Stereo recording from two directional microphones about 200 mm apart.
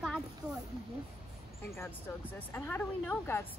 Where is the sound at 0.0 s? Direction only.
Centre (ahead or behind).